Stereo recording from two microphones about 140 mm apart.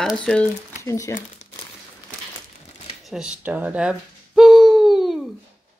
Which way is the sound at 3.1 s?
5° right (ahead or behind).